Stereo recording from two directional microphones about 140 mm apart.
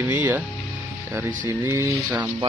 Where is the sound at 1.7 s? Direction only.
20° right (ahead or behind).